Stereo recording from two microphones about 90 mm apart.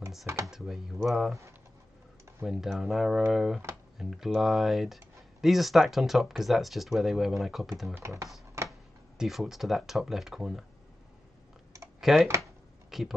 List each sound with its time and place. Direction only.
0.5 s speech: 5° right (ahead or behind)
2.4 s speech: 5° right (ahead or behind)
8.6 s a sound: 30° right (ahead or behind)
9.2 s speech: 5° right (ahead or behind)
12.0 s speech: 5° right (ahead or behind)